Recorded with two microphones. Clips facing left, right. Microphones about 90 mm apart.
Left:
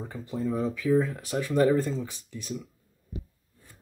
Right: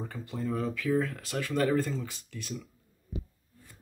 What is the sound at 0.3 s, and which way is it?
Speech, 15° left (ahead or behind).